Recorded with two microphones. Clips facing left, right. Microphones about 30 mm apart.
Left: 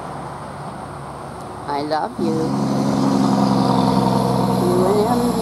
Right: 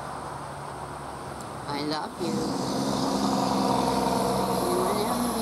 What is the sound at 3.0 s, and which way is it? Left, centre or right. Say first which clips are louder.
Vehicle: left 9 dB; left.